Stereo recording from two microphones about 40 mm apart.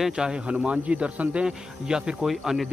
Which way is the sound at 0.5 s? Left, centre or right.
Right.